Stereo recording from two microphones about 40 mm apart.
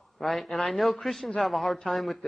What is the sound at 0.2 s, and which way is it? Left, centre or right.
A man's voice, centre.